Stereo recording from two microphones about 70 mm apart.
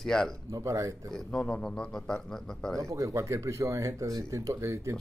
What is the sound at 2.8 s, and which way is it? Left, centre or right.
Speech, right.